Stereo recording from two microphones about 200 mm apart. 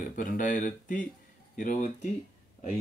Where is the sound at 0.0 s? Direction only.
45° left (ahead or behind).